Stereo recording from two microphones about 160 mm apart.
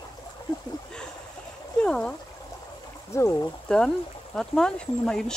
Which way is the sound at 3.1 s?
20° left (ahead or behind).